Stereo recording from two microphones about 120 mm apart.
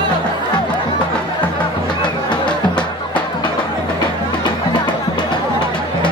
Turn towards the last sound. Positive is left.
turn(degrees=40)  # may be behind; listen again after turning